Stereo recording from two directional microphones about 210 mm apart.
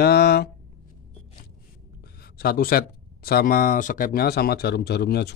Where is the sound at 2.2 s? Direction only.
45° left (ahead or behind).